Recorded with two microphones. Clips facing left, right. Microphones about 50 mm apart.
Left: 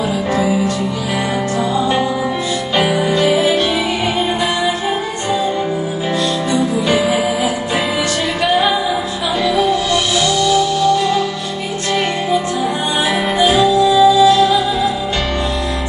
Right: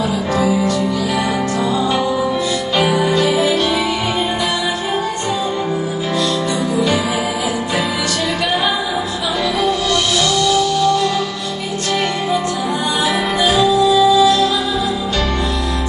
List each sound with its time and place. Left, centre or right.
0.4 s music: left
2.8 s music: left
10.4 s music: left
13.6 s music: left